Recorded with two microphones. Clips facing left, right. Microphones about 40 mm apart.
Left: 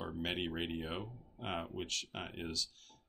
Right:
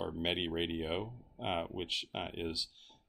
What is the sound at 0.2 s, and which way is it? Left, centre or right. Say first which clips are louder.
Speech: right 3 dB; centre.